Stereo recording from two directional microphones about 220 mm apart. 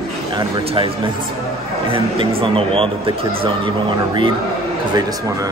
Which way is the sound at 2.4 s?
25° right (ahead or behind).